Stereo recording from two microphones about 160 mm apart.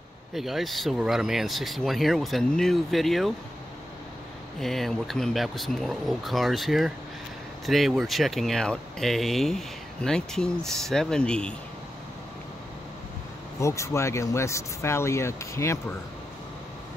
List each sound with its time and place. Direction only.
0.3 s speech: centre (ahead or behind)
4.6 s speech: centre (ahead or behind)
13.6 s speech: 20° left (ahead or behind)